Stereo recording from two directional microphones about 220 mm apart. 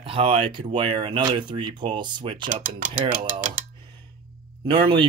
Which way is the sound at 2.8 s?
40° right (ahead or behind).